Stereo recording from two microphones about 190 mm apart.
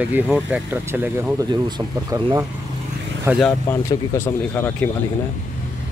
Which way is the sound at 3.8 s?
15° left (ahead or behind).